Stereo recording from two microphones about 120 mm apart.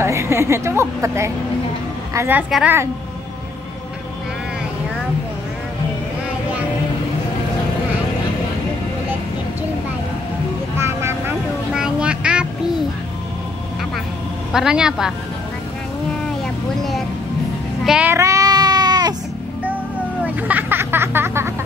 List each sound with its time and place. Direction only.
0.0 s a woman's voice: 25° right (ahead or behind)
2.1 s child singing: 15° right (ahead or behind)
10.8 s vehicle: 20° right (ahead or behind)
11.7 s music: 5° right (ahead or behind)
14.5 s a woman's voice: 5° right (ahead or behind)
17.8 s child singing: 10° right (ahead or behind)
18.1 s baby cry: 25° right (ahead or behind)
20.2 s a sound: 15° right (ahead or behind)